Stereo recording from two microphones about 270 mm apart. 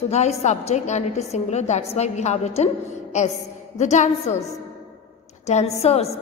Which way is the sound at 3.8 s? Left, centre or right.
Left.